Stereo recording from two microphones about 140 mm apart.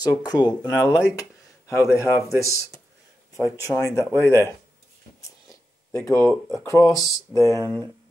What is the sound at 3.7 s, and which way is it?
Speech, 25° left (ahead or behind).